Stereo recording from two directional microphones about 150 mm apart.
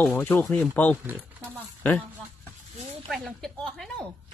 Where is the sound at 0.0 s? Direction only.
15° left (ahead or behind).